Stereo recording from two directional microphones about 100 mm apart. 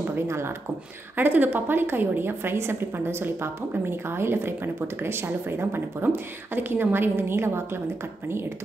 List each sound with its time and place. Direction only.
0.1 s a woman's voice: 25° right (ahead or behind)